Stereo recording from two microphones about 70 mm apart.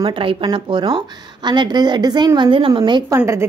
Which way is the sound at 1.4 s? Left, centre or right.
Right.